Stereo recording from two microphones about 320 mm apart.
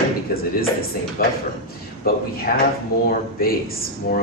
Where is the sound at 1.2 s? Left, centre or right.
Left.